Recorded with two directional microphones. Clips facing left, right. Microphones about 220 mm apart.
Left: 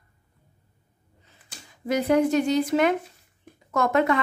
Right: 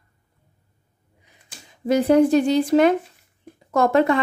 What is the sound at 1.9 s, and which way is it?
A woman's voice, 30° right (ahead or behind).